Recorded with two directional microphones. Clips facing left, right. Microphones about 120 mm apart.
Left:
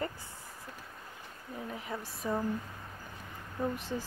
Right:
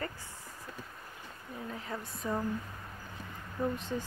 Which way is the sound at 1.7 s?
15° left (ahead or behind).